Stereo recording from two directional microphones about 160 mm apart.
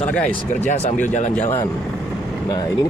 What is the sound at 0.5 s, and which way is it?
Speech, 50° left (ahead or behind).